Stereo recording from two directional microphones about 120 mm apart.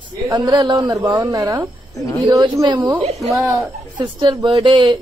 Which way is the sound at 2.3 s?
30° right (ahead or behind).